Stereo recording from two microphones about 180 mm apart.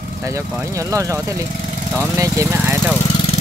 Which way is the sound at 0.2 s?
15° right (ahead or behind).